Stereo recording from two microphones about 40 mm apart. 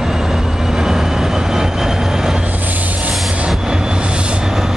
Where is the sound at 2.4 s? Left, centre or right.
Right.